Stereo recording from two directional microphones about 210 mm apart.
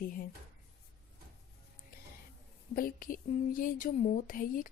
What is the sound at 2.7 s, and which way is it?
Speech, 40° left (ahead or behind).